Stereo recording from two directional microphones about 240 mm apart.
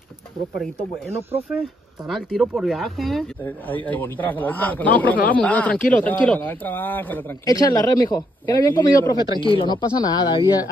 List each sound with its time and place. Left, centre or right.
0.6 s speech: centre